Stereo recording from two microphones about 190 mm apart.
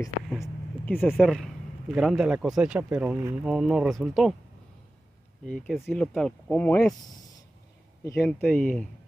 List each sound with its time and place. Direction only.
0.4 s a man's voice: 10° left (ahead or behind)
5.4 s speech: centre (ahead or behind)
8.0 s speech: 15° left (ahead or behind)